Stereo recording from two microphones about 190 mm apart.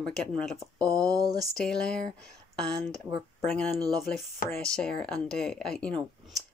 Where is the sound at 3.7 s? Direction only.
20° right (ahead or behind).